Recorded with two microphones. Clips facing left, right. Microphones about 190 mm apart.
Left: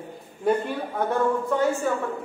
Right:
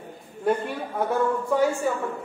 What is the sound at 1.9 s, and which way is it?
Speech, 10° right (ahead or behind).